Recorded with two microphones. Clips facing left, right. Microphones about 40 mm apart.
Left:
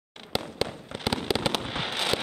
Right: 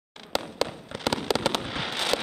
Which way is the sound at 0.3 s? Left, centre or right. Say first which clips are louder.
Right 1 dB; centre.